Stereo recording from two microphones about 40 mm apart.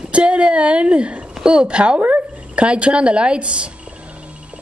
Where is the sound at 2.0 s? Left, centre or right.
Right.